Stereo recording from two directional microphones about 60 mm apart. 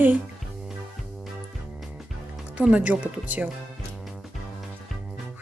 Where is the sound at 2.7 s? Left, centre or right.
Right.